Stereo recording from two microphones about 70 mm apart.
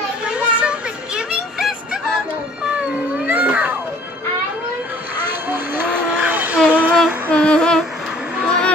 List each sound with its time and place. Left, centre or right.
0.2 s music: centre
6.0 s vehicle: right
6.7 s female singing: centre
7.2 s humming: centre
8.5 s music: centre